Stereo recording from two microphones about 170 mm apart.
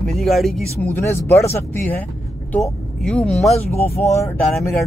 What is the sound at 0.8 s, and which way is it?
Speech, 15° left (ahead or behind).